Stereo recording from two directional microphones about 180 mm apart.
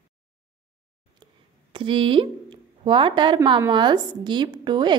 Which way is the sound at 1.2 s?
25° right (ahead or behind).